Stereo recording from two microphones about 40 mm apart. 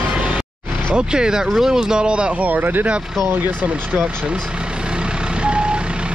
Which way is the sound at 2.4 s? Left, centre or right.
Right.